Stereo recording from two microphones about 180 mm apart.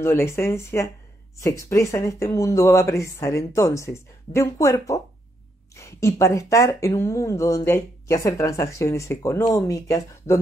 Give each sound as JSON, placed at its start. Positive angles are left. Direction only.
{"t": 0.0, "sound": "speech", "side_deg": 15}